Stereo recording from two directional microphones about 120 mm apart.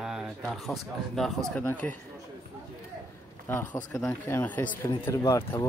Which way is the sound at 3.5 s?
20° left (ahead or behind).